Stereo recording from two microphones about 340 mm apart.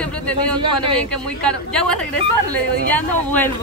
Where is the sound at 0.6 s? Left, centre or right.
Centre.